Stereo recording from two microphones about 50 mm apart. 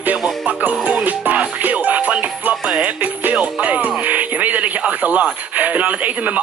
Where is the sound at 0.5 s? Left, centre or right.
Right.